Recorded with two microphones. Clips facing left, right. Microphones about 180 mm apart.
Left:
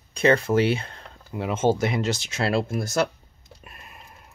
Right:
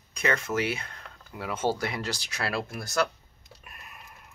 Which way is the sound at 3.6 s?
25° left (ahead or behind).